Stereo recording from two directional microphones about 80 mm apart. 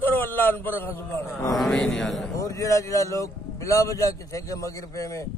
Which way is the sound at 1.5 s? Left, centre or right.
Centre.